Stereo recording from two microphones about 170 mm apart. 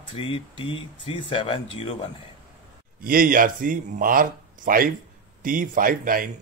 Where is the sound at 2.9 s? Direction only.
55° right (ahead or behind).